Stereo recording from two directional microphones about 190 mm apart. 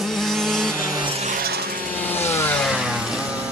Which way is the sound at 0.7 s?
15° right (ahead or behind).